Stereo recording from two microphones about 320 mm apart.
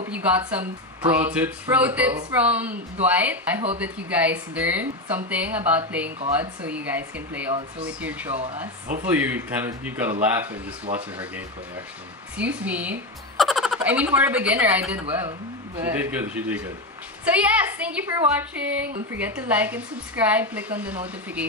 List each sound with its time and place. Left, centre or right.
0.1 s a woman's voice: centre
8.4 s speech: right
9.1 s a woman's voice: centre
12.4 s a woman's voice: centre